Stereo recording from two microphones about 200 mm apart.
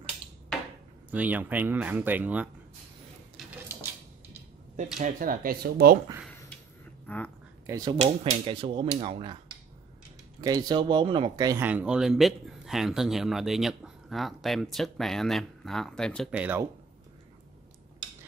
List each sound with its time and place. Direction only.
1.1 s speech: 10° right (ahead or behind)
4.9 s speech: 40° right (ahead or behind)
7.1 s speech: 10° left (ahead or behind)
7.6 s speech: 15° right (ahead or behind)
8.0 s speech: 30° right (ahead or behind)
10.4 s speech: 20° right (ahead or behind)